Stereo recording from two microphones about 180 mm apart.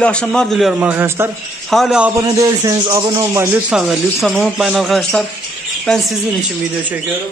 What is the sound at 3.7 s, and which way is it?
A man's voice, centre (ahead or behind).